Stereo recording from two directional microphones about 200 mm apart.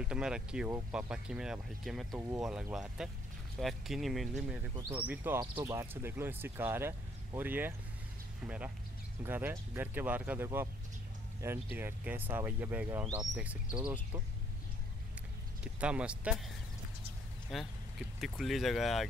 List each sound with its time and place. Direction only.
0.0 s speech: 5° right (ahead or behind)
4.7 s speech: 15° right (ahead or behind)
13.0 s speech: 20° right (ahead or behind)
15.6 s speech: 5° right (ahead or behind)
17.5 s speech: centre (ahead or behind)